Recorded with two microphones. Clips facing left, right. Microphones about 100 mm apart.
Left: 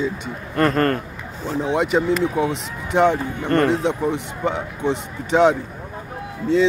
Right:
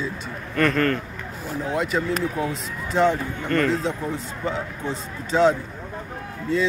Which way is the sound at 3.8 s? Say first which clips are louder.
Left 5 dB; 70° left (ahead or behind).